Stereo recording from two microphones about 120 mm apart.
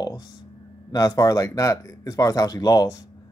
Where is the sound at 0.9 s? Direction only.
30° left (ahead or behind).